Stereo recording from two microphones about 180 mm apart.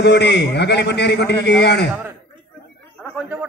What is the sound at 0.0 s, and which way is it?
A man's voice, 70° left (ahead or behind).